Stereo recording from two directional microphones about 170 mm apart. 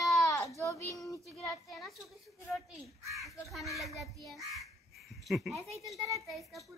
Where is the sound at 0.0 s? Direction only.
Centre (ahead or behind).